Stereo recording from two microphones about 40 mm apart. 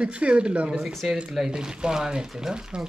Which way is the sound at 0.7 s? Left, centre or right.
Centre.